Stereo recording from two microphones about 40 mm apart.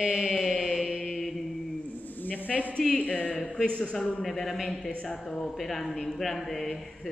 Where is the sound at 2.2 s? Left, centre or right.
Left.